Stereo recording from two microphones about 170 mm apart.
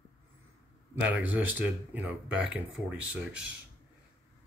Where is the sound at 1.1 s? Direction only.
10° right (ahead or behind).